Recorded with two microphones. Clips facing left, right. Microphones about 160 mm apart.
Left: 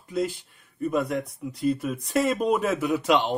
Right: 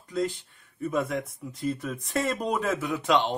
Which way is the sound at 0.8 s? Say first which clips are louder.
Left 2 dB; centre (ahead or behind).